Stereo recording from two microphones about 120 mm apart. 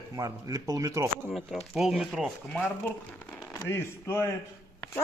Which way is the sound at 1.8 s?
5° right (ahead or behind).